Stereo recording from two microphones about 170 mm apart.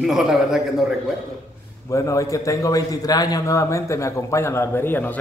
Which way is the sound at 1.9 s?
20° left (ahead or behind).